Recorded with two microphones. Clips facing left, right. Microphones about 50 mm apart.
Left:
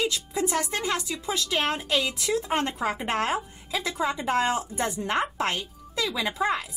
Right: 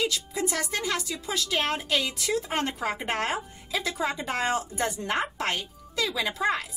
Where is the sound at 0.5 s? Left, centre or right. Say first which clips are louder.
Left 1 dB; left.